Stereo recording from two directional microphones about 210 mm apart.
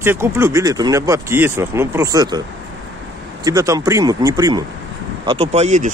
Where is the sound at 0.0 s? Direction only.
10° right (ahead or behind).